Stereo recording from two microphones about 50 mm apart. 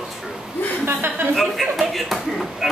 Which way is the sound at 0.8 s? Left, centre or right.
Right.